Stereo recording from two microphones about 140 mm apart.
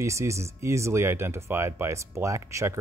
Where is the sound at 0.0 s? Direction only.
20° right (ahead or behind).